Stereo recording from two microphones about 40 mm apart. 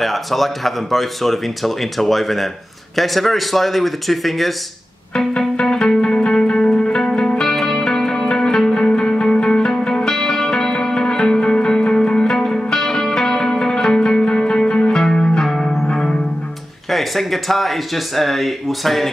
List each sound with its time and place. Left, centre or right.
0.0 s speech: centre
5.6 s music: centre
7.4 s music: centre
9.7 s music: centre
15.9 s music: centre
16.9 s speech: centre